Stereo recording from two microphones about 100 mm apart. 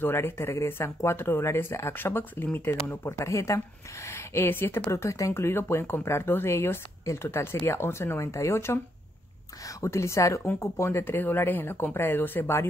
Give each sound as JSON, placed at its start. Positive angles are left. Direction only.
{"t": 0.0, "sound": "speech", "side_deg": 25}